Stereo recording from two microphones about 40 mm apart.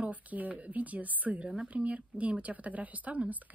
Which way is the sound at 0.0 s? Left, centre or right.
Right.